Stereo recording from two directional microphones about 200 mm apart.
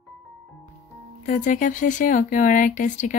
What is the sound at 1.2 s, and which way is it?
Speech, 35° left (ahead or behind).